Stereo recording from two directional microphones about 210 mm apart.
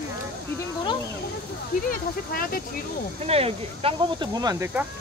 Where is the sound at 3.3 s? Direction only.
30° right (ahead or behind).